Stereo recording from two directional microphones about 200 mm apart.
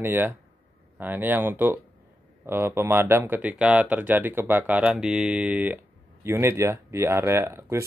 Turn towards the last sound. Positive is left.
turn(degrees=-10)  # may be behind; listen again after turning